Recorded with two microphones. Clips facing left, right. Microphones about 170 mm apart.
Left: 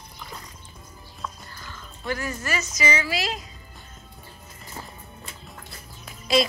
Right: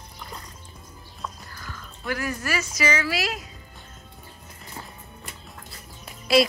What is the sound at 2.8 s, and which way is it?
Speech, 5° right (ahead or behind).